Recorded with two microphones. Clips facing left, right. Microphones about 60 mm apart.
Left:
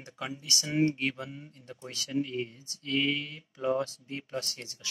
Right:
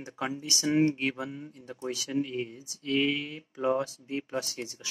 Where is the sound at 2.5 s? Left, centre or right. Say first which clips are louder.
Right 5 dB; centre.